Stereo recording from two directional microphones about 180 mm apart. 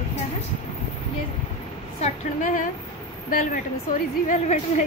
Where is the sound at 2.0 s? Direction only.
45° left (ahead or behind).